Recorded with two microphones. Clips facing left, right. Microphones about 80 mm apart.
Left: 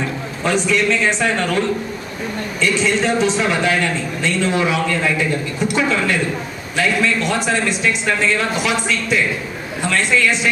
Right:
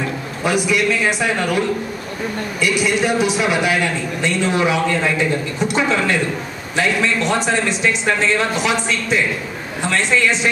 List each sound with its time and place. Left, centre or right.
0.4 s a man's voice: centre
2.6 s a man's voice: centre